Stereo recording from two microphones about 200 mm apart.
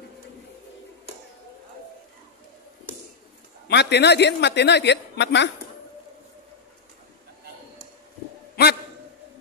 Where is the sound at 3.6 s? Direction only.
60° left (ahead or behind).